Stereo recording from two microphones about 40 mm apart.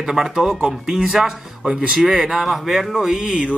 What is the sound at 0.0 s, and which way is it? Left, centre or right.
Speech, centre.